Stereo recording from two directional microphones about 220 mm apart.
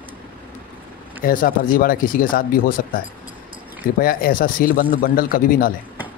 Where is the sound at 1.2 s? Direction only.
40° left (ahead or behind).